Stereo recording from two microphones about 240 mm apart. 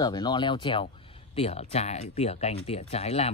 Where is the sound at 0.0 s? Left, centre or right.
Centre.